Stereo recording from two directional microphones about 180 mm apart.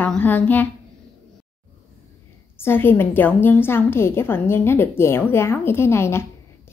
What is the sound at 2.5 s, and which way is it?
A woman's voice, 10° left (ahead or behind).